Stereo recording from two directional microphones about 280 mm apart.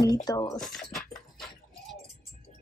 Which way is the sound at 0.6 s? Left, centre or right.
Centre.